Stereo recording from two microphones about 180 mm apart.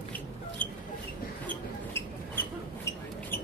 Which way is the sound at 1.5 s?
10° left (ahead or behind).